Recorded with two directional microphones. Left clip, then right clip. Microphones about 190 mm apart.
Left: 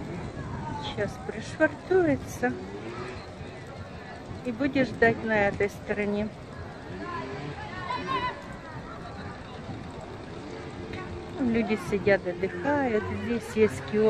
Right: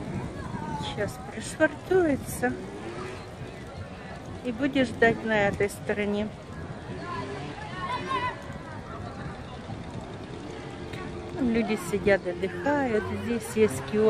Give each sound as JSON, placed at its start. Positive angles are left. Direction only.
{"t": 0.8, "sound": "speech", "side_deg": 0}
{"t": 4.5, "sound": "speech", "side_deg": -5}
{"t": 7.9, "sound": "a sound", "side_deg": -45}
{"t": 11.5, "sound": "speech", "side_deg": 0}